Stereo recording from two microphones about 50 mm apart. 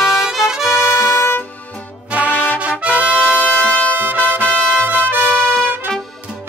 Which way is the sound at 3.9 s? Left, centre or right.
Right.